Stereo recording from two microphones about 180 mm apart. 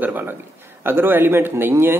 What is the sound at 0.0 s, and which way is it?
Speech, 10° right (ahead or behind).